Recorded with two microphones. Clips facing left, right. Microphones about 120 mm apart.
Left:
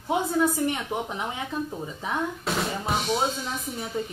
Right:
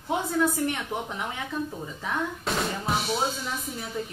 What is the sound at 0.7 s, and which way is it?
Speech, 20° left (ahead or behind).